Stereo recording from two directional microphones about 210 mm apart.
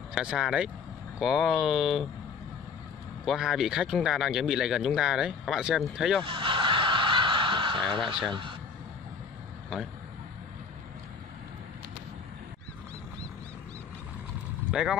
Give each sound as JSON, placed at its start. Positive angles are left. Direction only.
{"t": 0.1, "sound": "speech", "side_deg": -5}
{"t": 3.3, "sound": "speech", "side_deg": 0}
{"t": 6.3, "sound": "snicker", "side_deg": -25}
{"t": 14.7, "sound": "speech", "side_deg": -5}